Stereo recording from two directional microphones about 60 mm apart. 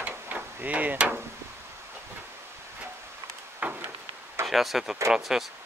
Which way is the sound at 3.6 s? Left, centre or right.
Right.